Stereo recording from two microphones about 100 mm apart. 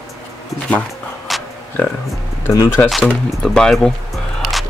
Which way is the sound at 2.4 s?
25° left (ahead or behind).